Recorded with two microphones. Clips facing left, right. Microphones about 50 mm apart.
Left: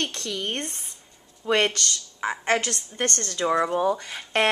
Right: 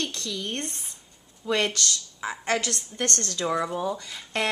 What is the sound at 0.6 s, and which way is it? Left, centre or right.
A woman's voice, left.